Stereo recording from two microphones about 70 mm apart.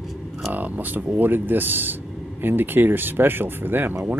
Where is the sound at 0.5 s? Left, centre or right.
Right.